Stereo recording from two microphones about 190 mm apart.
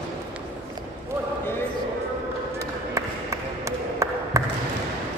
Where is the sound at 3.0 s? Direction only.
15° right (ahead or behind).